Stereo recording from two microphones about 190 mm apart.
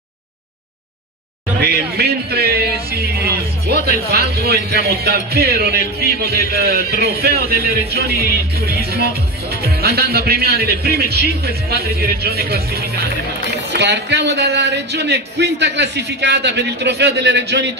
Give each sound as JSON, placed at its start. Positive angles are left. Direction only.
{"t": 1.6, "sound": "music", "side_deg": -55}
{"t": 13.7, "sound": "music", "side_deg": -65}